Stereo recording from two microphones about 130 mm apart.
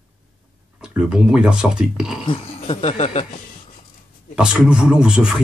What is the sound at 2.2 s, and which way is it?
Speech, 45° left (ahead or behind).